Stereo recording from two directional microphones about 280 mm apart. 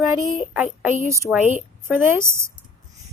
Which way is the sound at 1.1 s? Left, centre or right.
Centre.